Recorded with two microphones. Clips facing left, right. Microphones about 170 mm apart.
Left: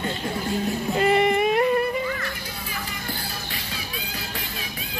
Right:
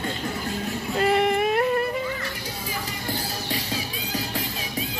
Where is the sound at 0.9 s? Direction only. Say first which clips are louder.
Left 1 dB; centre (ahead or behind).